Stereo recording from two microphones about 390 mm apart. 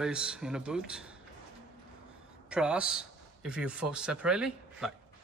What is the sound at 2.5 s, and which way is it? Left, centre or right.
A man's voice, centre.